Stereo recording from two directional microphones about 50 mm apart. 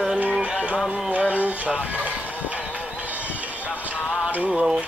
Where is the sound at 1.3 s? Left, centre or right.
Right.